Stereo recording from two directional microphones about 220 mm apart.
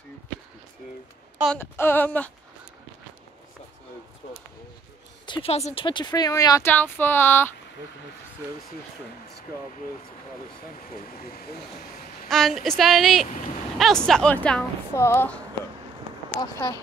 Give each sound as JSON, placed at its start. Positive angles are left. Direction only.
{"t": 1.6, "sound": "speech", "side_deg": 10}
{"t": 5.2, "sound": "speech", "side_deg": 25}
{"t": 12.3, "sound": "a woman's voice", "side_deg": 0}